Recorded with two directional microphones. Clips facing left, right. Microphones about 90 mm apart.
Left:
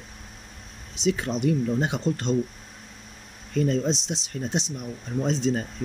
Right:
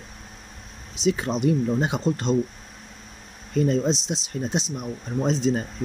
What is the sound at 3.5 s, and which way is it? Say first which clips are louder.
Speech: right 2 dB; 25° right (ahead or behind).